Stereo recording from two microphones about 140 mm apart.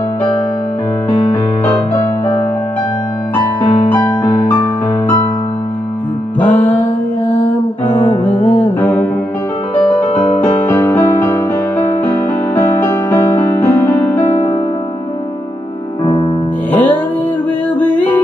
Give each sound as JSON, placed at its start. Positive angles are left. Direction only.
{"t": 6.4, "sound": "music", "side_deg": 10}
{"t": 8.0, "sound": "music", "side_deg": 10}
{"t": 8.3, "sound": "music", "side_deg": 35}
{"t": 10.4, "sound": "music", "side_deg": 15}
{"t": 16.7, "sound": "music", "side_deg": 15}